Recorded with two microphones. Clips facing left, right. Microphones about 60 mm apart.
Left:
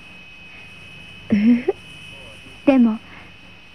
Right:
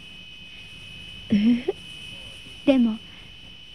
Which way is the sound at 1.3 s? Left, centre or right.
Left.